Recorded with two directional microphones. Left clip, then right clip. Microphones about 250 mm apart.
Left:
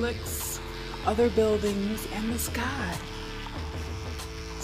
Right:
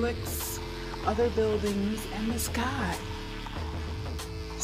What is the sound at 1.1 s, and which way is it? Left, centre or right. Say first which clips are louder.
Speech: left 3 dB; centre.